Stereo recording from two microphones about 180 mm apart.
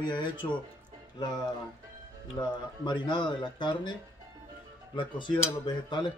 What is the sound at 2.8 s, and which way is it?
Speech, 25° left (ahead or behind).